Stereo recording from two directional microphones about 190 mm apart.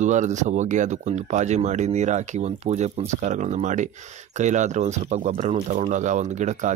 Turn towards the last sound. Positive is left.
turn(degrees=-40)  # may be behind; listen again after turning